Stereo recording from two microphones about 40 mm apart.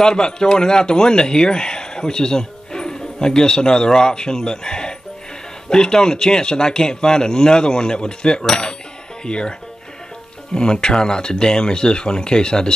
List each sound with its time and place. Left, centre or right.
0.0 s a man's voice: centre